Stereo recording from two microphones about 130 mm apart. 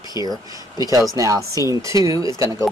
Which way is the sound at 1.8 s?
25° right (ahead or behind).